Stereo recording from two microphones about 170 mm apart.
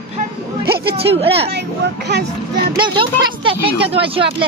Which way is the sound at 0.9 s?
35° right (ahead or behind).